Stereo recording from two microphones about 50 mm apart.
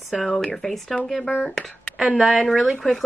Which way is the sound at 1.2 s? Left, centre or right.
Centre.